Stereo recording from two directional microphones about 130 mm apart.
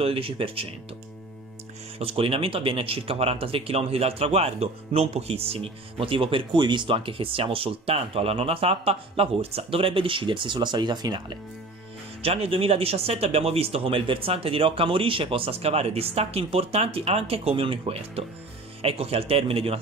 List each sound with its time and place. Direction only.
0.0 s speech: 45° right (ahead or behind)
2.0 s speech: 50° right (ahead or behind); by 11.3 s 35° right (ahead or behind)
12.2 s speech: 50° right (ahead or behind)